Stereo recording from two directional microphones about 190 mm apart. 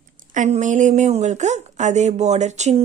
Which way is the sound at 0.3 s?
40° right (ahead or behind).